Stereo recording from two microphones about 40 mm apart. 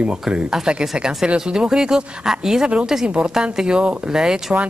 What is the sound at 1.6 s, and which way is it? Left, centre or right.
A woman's voice, centre.